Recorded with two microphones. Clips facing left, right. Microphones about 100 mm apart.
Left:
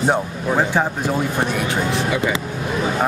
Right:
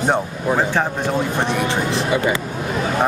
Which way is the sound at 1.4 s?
5° left (ahead or behind).